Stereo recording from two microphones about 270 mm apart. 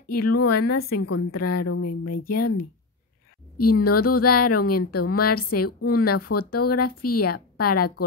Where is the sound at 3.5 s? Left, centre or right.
Left.